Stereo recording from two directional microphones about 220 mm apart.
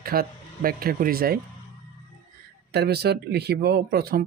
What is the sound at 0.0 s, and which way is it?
Speech, 40° right (ahead or behind).